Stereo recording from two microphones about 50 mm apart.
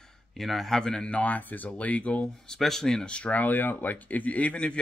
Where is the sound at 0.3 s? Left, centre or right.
Centre.